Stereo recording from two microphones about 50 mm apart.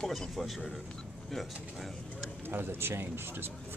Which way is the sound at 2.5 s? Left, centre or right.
Right.